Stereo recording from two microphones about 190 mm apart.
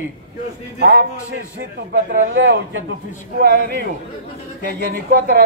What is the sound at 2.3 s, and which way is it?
Speech, 80° right.